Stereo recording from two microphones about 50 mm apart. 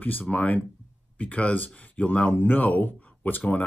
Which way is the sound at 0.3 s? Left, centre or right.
Left.